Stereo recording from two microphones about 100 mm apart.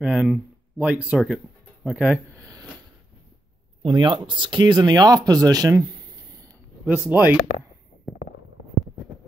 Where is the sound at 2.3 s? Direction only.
35° right (ahead or behind).